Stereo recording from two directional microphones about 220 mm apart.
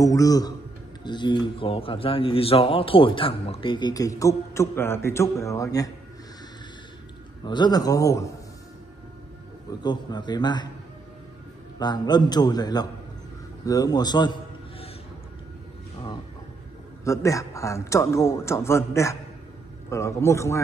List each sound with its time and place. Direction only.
0.0 s a man's voice: 15° left (ahead or behind)
7.4 s a man's voice: 20° left (ahead or behind)
9.7 s a man's voice: 20° left (ahead or behind)
11.8 s a man's voice: 20° left (ahead or behind)
17.0 s a man's voice: 15° left (ahead or behind)